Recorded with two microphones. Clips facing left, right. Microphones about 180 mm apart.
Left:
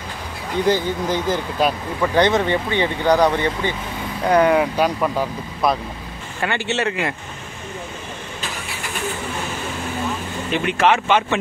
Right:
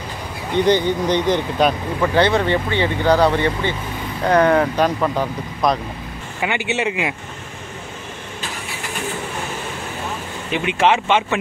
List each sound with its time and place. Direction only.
0.6 s speech: 5° left (ahead or behind)
2.1 s speech: 15° left (ahead or behind)
6.4 s speech: 15° right (ahead or behind)
10.5 s speech: 15° right (ahead or behind)